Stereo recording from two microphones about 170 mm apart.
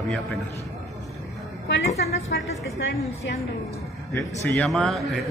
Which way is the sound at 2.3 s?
90° left.